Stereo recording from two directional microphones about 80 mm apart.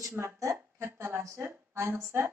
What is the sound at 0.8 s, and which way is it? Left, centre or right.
Music, right.